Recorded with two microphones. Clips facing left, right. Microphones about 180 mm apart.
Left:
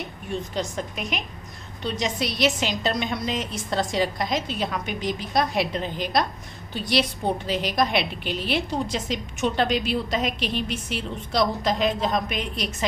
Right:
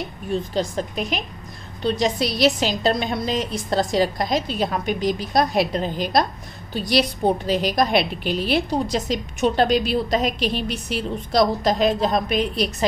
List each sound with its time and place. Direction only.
0.3 s a woman's voice: 30° right (ahead or behind)